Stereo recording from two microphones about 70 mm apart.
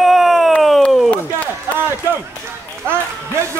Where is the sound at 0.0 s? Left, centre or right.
Centre.